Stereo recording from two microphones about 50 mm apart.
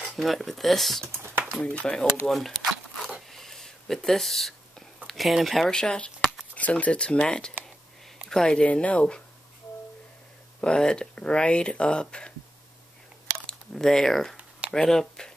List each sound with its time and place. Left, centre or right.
0.2 s speech: centre
1.0 s speech: right
1.6 s speech: left
2.2 s zipper: centre
5.7 s speech: centre
6.5 s speech: left
10.6 s speech: centre
13.5 s speech: centre